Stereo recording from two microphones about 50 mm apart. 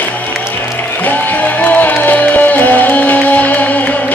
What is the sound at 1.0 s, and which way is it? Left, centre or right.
Music, left.